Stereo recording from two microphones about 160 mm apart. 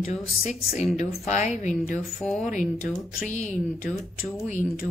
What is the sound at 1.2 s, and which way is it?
Speech, 50° left (ahead or behind).